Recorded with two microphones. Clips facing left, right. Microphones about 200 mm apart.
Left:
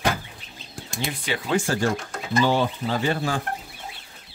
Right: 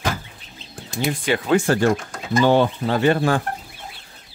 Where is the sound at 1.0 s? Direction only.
55° right (ahead or behind).